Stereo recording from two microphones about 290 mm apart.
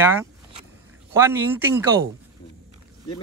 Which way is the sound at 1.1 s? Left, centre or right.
Centre.